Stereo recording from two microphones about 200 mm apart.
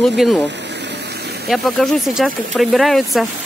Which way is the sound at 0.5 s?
60° right (ahead or behind).